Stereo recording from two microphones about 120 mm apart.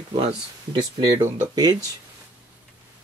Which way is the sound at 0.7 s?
35° right (ahead or behind).